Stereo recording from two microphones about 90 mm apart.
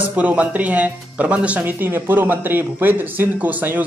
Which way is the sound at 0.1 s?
20° right (ahead or behind).